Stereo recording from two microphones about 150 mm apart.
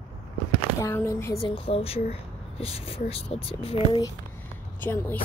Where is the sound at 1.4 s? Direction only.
40° left (ahead or behind).